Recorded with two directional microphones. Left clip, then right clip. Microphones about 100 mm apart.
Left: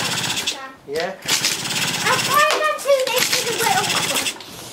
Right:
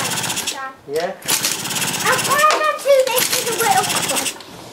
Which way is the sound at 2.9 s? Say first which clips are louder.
Right 4 dB; 20° left (ahead or behind).